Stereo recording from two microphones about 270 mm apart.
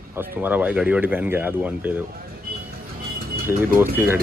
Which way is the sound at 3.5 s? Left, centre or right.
Centre.